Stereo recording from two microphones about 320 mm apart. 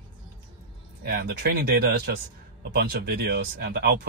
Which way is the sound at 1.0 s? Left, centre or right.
Right.